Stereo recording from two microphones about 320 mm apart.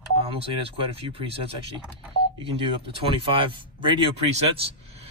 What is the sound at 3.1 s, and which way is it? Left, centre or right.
A man's voice, centre.